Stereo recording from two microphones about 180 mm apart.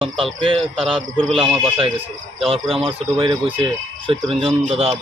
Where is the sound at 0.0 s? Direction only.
30° right (ahead or behind).